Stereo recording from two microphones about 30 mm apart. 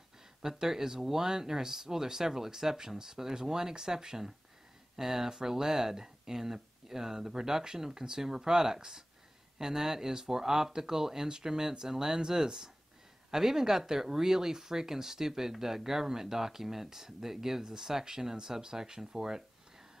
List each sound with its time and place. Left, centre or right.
0.4 s speech: centre